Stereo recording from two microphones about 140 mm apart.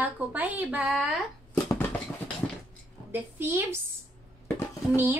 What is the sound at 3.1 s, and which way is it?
Speech, 15° right (ahead or behind).